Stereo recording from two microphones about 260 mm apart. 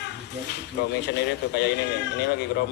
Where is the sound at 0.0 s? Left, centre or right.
Left.